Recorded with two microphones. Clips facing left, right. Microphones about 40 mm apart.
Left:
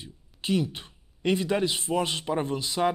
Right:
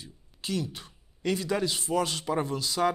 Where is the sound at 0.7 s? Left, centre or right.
Left.